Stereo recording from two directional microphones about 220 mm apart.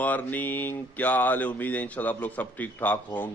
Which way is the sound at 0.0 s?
5° left (ahead or behind).